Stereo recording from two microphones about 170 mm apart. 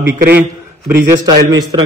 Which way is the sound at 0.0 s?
65° right (ahead or behind).